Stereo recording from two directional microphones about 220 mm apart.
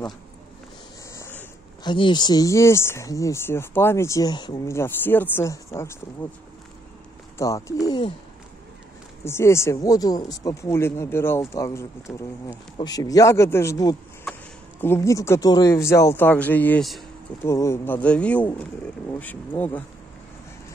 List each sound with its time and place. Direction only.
1.1 s speech: 10° left (ahead or behind)
7.3 s speech: 15° left (ahead or behind)
9.2 s speech: 10° left (ahead or behind)